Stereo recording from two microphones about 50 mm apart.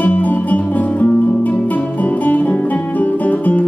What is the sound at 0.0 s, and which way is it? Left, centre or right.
Music, left.